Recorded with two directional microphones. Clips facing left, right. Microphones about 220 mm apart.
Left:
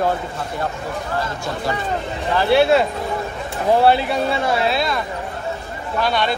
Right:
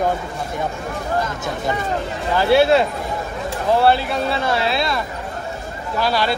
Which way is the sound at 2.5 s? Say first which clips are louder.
Right 1 dB; centre (ahead or behind).